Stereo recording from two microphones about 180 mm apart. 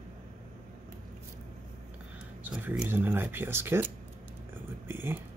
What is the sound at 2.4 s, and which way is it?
Speech, 10° right (ahead or behind).